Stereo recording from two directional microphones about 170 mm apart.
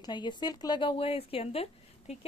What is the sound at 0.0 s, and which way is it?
Speech, 25° left (ahead or behind).